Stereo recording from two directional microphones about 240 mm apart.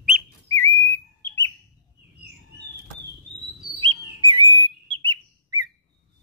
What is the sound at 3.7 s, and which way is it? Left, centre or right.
Bird, centre.